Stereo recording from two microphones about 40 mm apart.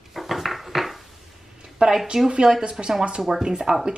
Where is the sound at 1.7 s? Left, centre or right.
Centre.